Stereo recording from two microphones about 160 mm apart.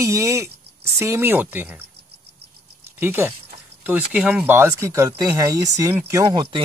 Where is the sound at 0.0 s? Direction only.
20° right (ahead or behind).